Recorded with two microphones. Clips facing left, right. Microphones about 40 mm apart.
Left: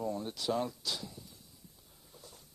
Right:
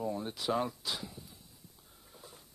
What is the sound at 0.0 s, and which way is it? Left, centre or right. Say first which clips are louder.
Speech: even; centre.